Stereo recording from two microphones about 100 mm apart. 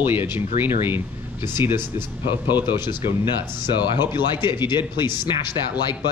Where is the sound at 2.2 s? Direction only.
50° left (ahead or behind).